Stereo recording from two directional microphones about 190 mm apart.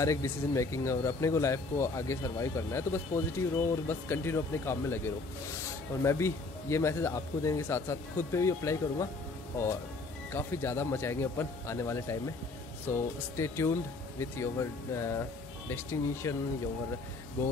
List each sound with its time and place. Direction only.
0.0 s speech: 15° left (ahead or behind)
10.3 s speech: 15° left (ahead or behind)